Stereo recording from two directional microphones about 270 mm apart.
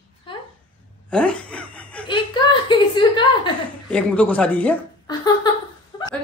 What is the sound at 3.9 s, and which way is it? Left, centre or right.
A woman's voice, centre.